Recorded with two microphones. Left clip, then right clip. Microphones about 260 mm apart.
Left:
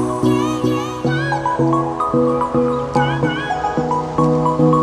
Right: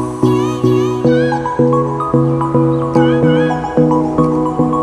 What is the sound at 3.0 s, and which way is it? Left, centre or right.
Music, centre.